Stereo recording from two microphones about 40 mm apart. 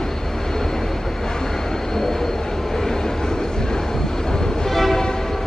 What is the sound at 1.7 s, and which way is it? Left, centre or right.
Vehicle, centre.